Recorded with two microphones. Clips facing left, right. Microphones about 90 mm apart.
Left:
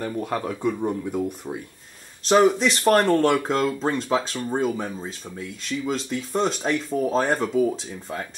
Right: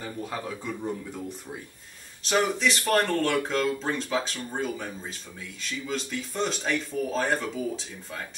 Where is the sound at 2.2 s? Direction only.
40° left (ahead or behind).